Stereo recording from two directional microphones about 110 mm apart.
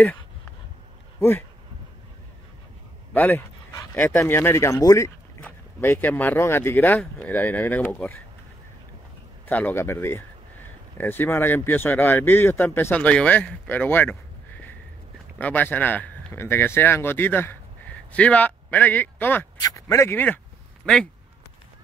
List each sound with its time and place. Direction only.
3.1 s speech: 15° left (ahead or behind); by 5.1 s 30° left (ahead or behind)
5.4 s speech: 20° left (ahead or behind)
9.5 s speech: 15° left (ahead or behind)
19.6 s speech: 25° left (ahead or behind)
20.8 s speech: 5° left (ahead or behind)